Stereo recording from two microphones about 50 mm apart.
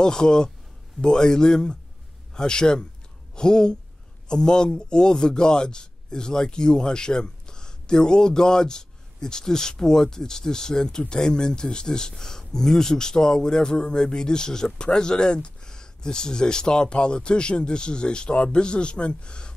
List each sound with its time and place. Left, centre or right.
0.0 s a man's voice: centre